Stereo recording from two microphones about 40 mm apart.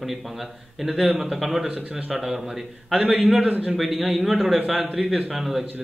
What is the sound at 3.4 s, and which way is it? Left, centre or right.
Speech, right.